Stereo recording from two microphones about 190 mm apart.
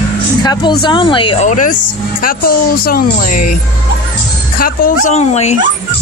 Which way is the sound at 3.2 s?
45° left (ahead or behind).